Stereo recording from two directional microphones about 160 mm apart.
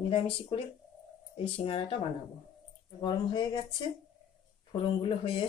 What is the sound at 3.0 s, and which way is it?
Speech, 25° left (ahead or behind).